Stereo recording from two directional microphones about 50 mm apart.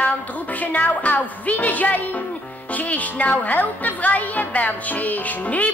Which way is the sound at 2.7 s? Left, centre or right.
Left.